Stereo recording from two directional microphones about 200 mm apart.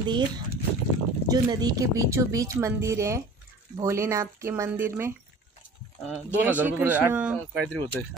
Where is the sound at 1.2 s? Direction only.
20° right (ahead or behind).